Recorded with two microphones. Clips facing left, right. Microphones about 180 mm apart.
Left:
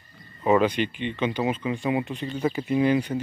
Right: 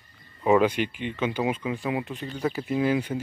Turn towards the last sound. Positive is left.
turn(degrees=-5)  # may be behind; listen again after turning